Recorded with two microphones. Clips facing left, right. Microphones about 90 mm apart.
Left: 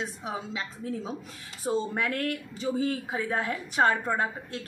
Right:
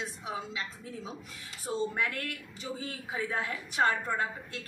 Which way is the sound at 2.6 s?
45° left (ahead or behind).